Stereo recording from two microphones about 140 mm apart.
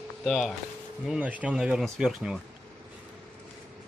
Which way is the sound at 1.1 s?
10° right (ahead or behind).